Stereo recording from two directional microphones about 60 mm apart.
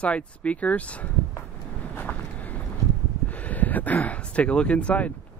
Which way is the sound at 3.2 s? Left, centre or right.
Left.